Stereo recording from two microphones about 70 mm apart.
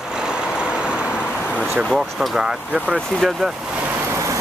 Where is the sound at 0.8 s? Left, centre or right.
Centre.